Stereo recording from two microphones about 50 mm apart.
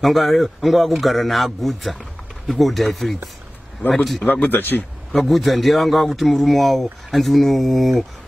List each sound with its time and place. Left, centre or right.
0.0 s a man's voice: centre
4.2 s speech: left
5.1 s a man's voice: centre